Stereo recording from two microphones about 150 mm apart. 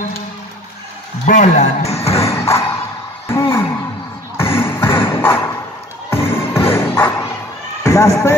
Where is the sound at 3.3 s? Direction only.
15° left (ahead or behind).